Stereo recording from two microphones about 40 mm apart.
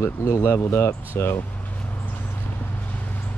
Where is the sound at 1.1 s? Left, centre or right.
Left.